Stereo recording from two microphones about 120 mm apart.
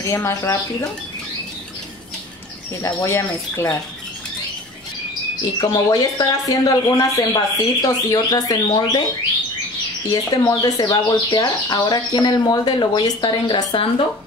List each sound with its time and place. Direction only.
0.0 s speech: 25° left (ahead or behind)
2.8 s speech: 25° left (ahead or behind)
5.6 s speech: 35° left (ahead or behind)
10.1 s speech: 35° left (ahead or behind)